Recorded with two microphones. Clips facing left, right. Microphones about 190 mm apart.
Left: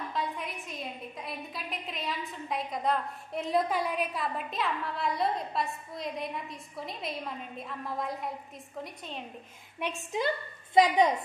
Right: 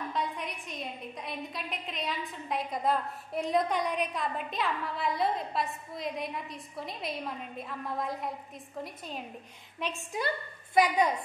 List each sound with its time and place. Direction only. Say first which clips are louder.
0.1 s a woman's voice: even; centre (ahead or behind)
9.8 s a woman's voice: left 2 dB; 15° left (ahead or behind)